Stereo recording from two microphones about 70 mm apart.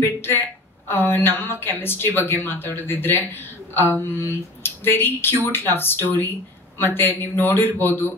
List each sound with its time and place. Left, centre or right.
0.0 s a woman's voice: left